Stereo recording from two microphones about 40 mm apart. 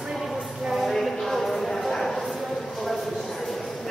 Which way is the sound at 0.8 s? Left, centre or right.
Centre.